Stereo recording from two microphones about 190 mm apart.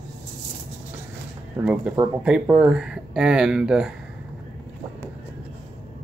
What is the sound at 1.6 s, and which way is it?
Speech, 5° right (ahead or behind).